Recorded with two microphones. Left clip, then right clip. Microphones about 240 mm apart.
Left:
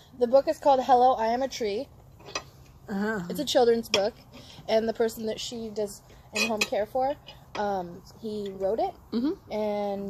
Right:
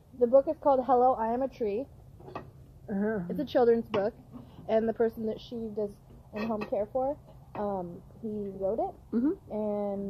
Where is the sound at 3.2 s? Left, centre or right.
Centre.